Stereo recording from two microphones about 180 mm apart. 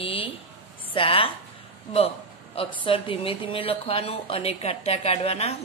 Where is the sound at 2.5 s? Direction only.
30° left (ahead or behind).